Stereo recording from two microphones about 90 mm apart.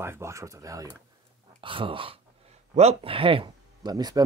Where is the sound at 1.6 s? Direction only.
70° right (ahead or behind).